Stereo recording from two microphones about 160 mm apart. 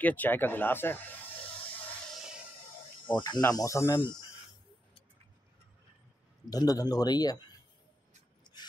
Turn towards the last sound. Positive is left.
turn(degrees=25)  # may be behind; listen again after turning